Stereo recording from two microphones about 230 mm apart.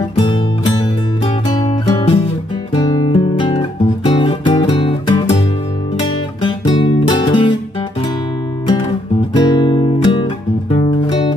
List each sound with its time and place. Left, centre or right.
1.2 s music: left
6.4 s music: centre
9.3 s music: centre